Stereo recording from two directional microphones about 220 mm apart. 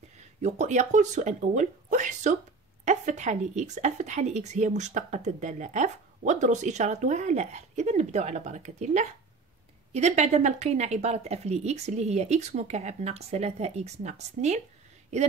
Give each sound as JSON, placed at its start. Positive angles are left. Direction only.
{"t": 0.4, "sound": "a woman's voice", "side_deg": -30}